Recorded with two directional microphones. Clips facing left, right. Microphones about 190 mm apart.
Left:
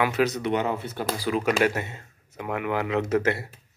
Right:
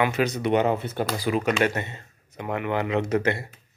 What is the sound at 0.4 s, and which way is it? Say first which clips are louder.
Speech: right 4 dB; 20° right (ahead or behind).